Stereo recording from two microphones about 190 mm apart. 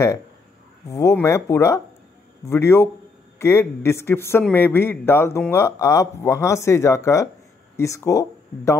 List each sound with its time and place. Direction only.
0.8 s speech: 15° left (ahead or behind)